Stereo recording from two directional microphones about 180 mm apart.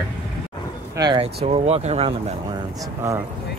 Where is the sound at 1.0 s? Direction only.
25° right (ahead or behind).